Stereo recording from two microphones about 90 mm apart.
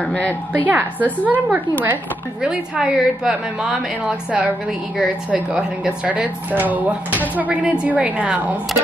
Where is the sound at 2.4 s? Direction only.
10° right (ahead or behind).